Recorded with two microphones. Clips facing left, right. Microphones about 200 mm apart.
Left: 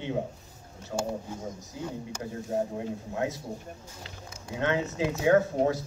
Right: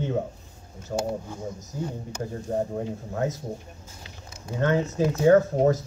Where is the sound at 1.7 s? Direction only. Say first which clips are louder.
Right 5 dB; 45° right (ahead or behind).